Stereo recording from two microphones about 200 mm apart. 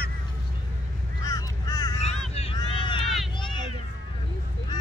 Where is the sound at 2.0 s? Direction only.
30° left (ahead or behind).